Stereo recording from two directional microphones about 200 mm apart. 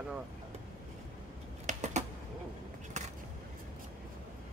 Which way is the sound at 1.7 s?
40° right (ahead or behind).